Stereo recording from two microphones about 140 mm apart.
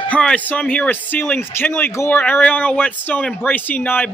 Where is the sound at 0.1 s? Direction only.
10° left (ahead or behind).